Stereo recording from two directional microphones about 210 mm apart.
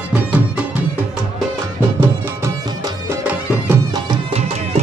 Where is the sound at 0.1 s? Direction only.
5° right (ahead or behind).